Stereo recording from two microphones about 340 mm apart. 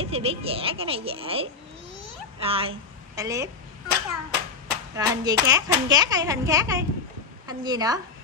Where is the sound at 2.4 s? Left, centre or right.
Centre.